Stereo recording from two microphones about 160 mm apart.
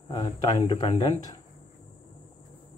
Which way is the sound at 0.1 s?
25° left (ahead or behind).